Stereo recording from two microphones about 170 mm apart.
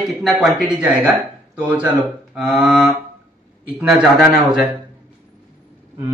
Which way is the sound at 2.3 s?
5° right (ahead or behind).